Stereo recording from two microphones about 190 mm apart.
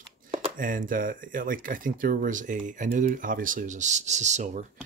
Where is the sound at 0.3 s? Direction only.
45° right (ahead or behind).